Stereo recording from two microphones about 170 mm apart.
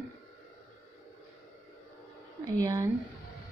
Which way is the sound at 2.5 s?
20° right (ahead or behind).